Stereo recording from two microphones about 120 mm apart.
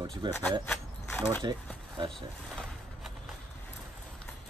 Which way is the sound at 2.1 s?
Centre (ahead or behind).